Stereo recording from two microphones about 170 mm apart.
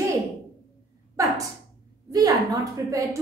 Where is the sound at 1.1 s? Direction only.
20° right (ahead or behind).